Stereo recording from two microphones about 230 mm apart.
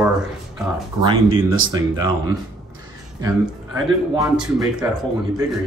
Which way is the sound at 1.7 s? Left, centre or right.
Centre.